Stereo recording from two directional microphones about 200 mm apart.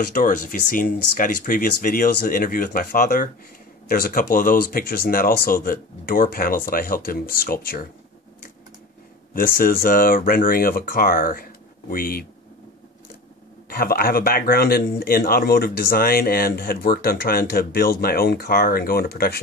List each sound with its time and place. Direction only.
0.1 s a man's voice: 45° left (ahead or behind)
9.3 s a man's voice: 45° left (ahead or behind)
13.7 s a man's voice: 45° left (ahead or behind)